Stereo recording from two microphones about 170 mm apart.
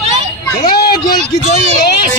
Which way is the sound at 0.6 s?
65° left (ahead or behind).